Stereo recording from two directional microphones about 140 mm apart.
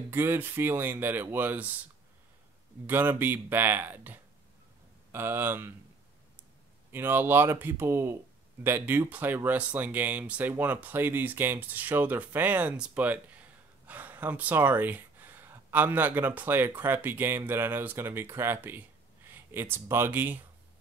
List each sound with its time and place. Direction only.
0.1 s speech: 15° right (ahead or behind)
2.9 s speech: 15° right (ahead or behind)
6.9 s speech: 15° right (ahead or behind)